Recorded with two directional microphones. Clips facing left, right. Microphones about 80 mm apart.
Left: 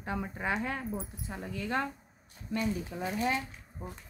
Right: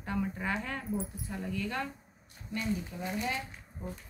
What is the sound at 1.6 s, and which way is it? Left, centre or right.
Speech, left.